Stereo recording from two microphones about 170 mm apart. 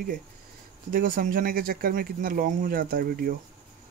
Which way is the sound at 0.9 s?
55° right (ahead or behind).